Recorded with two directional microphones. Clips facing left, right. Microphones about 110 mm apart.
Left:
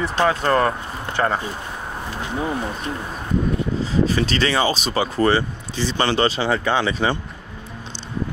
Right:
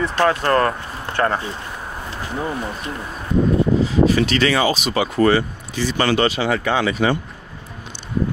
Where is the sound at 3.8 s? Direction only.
35° left (ahead or behind).